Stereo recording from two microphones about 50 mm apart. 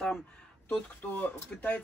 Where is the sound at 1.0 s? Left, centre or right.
Left.